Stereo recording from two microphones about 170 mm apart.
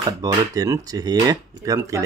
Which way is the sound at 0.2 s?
20° right (ahead or behind).